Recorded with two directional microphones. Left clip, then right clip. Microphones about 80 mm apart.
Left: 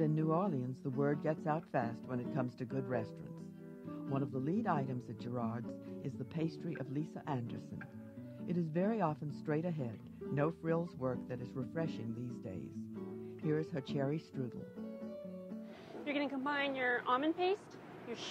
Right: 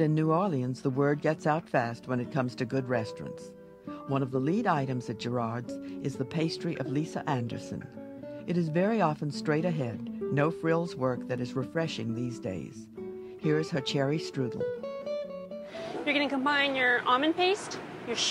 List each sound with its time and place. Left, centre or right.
0.0 s speech: left
4.1 s speech: left
8.5 s a woman's voice: left